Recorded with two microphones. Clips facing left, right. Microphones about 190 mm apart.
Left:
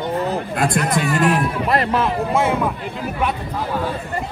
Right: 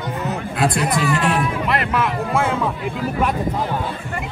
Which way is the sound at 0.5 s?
50° left (ahead or behind).